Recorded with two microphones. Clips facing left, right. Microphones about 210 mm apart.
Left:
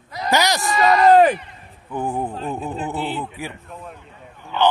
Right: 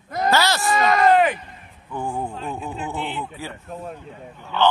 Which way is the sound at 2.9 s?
35° left (ahead or behind).